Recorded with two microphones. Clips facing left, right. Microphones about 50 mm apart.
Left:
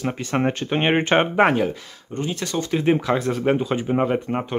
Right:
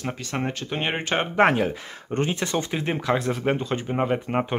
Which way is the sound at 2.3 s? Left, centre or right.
Right.